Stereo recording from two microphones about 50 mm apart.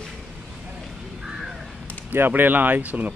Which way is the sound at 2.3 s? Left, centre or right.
Right.